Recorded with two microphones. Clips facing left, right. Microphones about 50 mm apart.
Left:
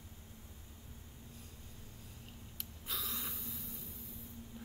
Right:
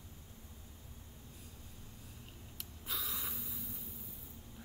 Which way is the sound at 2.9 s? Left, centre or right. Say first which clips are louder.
Even; centre.